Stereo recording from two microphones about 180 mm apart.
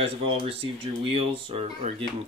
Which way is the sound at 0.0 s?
30° right (ahead or behind).